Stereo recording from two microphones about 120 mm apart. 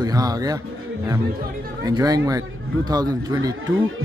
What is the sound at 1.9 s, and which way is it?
Speech, 30° right (ahead or behind).